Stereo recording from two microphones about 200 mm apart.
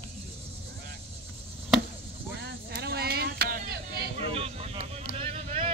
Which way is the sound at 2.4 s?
55° right (ahead or behind).